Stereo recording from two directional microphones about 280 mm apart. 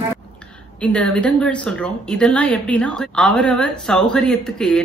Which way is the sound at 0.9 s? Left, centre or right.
Centre.